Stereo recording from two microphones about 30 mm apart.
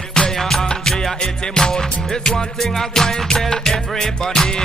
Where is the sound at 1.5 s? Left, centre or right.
Left.